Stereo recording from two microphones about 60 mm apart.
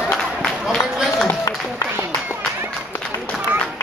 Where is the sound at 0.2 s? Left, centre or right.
Centre.